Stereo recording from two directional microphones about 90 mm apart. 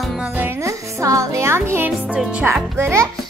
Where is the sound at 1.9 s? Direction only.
15° right (ahead or behind).